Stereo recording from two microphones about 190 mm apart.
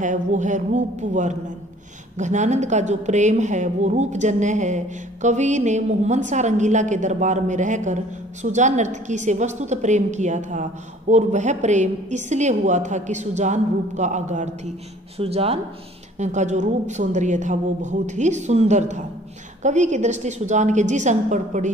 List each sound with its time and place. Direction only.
0.0 s a woman's voice: 40° right (ahead or behind)